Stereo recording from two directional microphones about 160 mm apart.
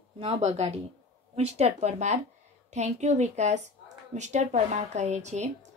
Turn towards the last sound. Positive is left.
turn(degrees=-45)  # may be behind; listen again after turning